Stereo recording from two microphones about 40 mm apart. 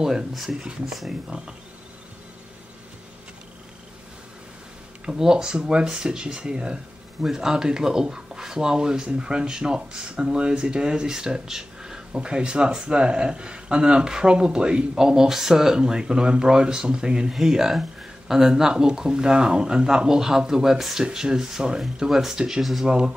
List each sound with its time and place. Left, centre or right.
1.3 s speech: right
5.0 s speech: centre
12.1 s speech: right; by 22.8 s centre
22.8 s speech: right